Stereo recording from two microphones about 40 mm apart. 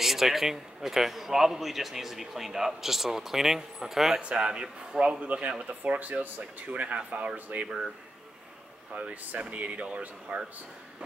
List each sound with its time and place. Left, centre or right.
0.0 s speech: centre
4.2 s speech: right
6.7 s speech: right
8.9 s speech: right